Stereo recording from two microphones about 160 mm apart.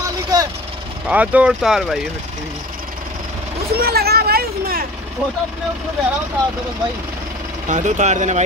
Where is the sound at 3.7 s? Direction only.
75° right (ahead or behind).